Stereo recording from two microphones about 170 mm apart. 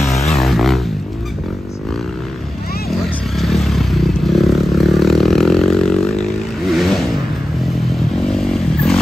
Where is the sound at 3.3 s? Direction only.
Centre (ahead or behind).